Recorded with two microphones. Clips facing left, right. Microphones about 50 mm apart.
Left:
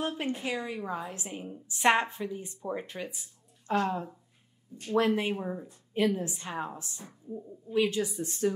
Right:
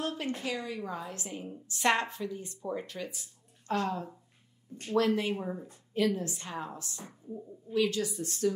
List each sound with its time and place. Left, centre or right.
0.0 s speech: left
5.4 s speech: centre
5.9 s speech: left